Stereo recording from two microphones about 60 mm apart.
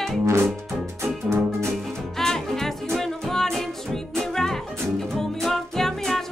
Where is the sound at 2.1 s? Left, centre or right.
Centre.